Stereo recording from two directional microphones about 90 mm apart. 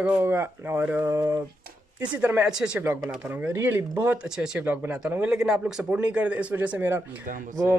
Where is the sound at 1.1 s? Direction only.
35° right (ahead or behind).